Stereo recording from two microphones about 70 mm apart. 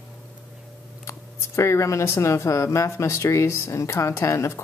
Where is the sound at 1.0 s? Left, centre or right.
Left.